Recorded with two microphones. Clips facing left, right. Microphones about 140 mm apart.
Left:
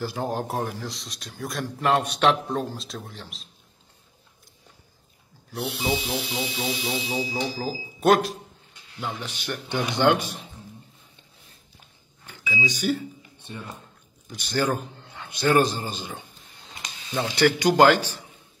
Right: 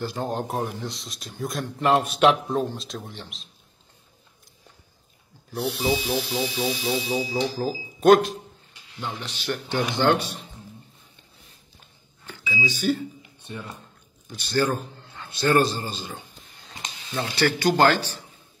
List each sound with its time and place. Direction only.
0.0 s a man's voice: 5° left (ahead or behind)
5.5 s a man's voice: centre (ahead or behind)
9.0 s a man's voice: 10° left (ahead or behind)
12.5 s a man's voice: 15° left (ahead or behind)
14.3 s a man's voice: 15° left (ahead or behind)
17.1 s a man's voice: 15° left (ahead or behind)